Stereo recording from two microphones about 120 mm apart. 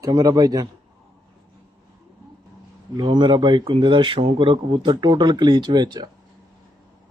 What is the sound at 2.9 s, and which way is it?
Speech, 40° right (ahead or behind).